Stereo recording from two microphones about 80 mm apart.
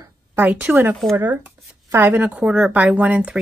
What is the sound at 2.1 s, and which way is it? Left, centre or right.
Speech, centre.